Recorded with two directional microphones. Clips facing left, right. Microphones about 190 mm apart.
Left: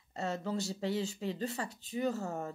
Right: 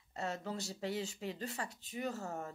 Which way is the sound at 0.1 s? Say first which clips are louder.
Left 5 dB; 30° left (ahead or behind).